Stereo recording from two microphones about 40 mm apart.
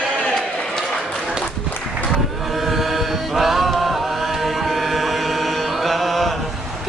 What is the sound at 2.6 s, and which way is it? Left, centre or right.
Mantra, centre.